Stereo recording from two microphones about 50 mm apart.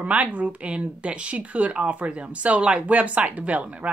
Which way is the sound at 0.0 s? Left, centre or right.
Right.